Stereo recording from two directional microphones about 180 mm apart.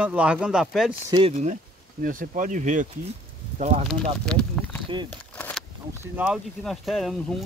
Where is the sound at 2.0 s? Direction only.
50° right (ahead or behind).